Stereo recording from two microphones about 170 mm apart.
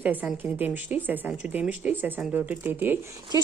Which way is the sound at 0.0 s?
10° right (ahead or behind).